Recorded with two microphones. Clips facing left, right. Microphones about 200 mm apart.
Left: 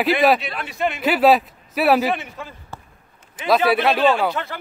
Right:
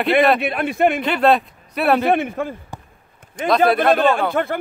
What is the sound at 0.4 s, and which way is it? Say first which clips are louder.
Speech: right 7 dB; 55° right (ahead or behind).